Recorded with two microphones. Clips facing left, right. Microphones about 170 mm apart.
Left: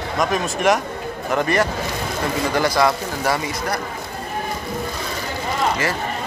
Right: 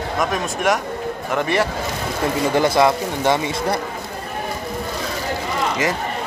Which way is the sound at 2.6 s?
20° right (ahead or behind).